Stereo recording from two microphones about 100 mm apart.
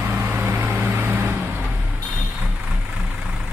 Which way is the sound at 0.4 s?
20° right (ahead or behind).